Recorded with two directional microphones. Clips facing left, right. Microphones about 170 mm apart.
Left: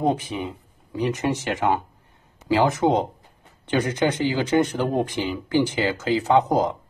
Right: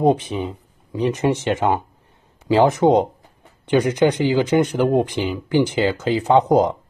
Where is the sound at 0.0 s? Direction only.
20° right (ahead or behind).